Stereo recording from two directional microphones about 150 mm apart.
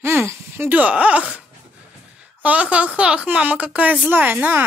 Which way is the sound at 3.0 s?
5° right (ahead or behind).